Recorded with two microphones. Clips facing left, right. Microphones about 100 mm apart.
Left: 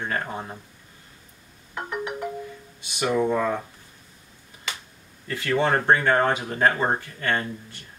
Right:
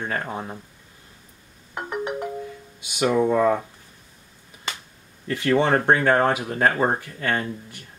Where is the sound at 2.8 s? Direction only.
15° right (ahead or behind).